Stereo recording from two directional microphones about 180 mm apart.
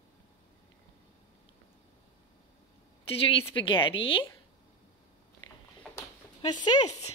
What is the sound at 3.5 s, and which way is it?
Speech, 25° left (ahead or behind).